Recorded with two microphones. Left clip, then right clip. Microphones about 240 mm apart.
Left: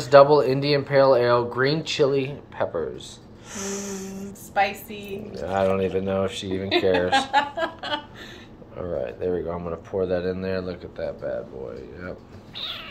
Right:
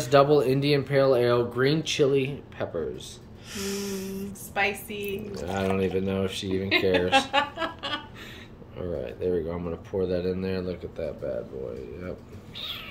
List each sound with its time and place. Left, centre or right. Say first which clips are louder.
0.1 s speech: left 6 dB; centre
4.1 s a sound: left 4 dB; centre
5.4 s speech: left 6 dB; centre
12.5 s cat: left 3 dB; centre